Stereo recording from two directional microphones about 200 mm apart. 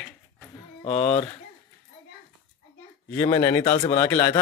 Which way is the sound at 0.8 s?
30° left (ahead or behind).